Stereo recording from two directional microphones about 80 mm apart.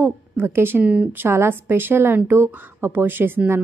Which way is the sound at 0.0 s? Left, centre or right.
Right.